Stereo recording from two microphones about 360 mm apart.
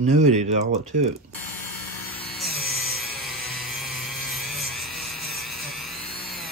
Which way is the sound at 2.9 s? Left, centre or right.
Centre.